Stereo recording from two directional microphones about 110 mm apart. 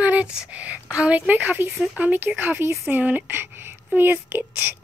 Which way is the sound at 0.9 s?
10° right (ahead or behind).